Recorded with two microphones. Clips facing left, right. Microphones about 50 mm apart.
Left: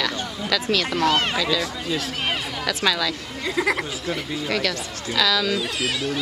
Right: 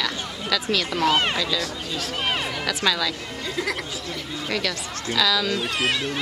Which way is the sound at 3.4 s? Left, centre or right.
Left.